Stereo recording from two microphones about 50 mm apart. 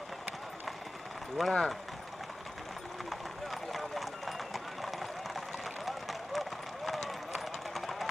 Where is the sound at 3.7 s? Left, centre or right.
Centre.